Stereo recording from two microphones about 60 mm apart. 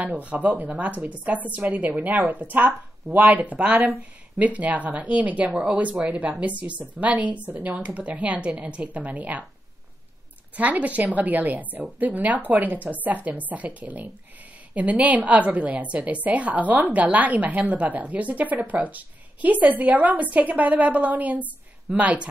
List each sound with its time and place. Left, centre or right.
0.0 s a woman's voice: right
10.5 s a woman's voice: right